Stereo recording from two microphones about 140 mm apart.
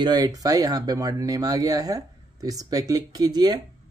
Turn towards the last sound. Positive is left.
turn(degrees=-30)  # may be behind; listen again after turning